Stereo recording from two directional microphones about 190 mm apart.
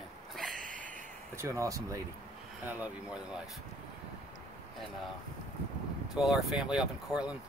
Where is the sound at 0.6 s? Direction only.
45° right (ahead or behind).